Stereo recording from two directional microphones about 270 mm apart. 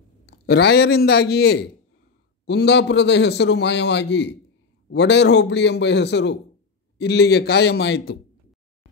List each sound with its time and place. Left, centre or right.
0.3 s a man's voice: left